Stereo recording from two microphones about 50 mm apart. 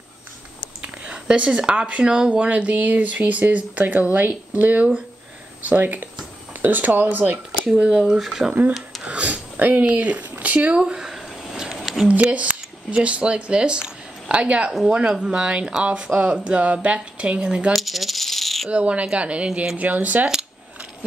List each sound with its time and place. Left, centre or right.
0.8 s speech: right
7.7 s speech: centre
8.2 s speech: centre
9.0 s a sound: right
10.4 s speech: right
10.8 s a sound: centre
12.1 s speech: right
17.7 s coin: centre
18.7 s speech: right